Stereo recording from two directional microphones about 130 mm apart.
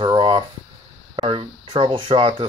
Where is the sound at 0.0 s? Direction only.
40° right (ahead or behind).